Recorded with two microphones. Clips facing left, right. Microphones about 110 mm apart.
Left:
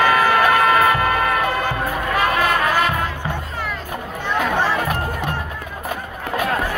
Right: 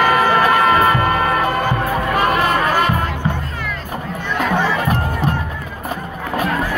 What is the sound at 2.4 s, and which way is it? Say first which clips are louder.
Music: right 2 dB; 45° right (ahead or behind).